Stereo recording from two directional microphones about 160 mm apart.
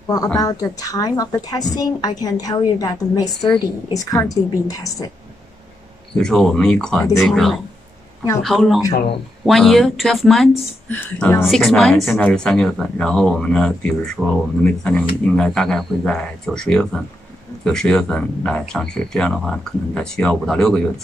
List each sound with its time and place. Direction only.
0.4 s a woman's voice: 20° left (ahead or behind)
6.1 s a woman's voice: 5° left (ahead or behind)